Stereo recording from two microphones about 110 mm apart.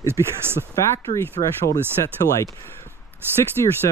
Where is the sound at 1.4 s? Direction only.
90° left.